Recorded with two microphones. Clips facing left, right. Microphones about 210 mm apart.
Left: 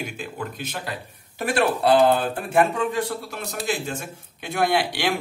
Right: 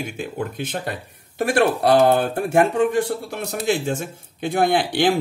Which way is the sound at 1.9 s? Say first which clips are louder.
Right 2 dB; 45° right (ahead or behind).